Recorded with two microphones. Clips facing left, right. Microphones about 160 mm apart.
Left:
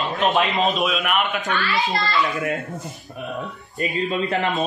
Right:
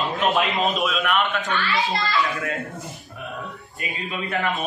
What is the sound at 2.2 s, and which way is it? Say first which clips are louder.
Speech: left 3 dB; 20° left (ahead or behind).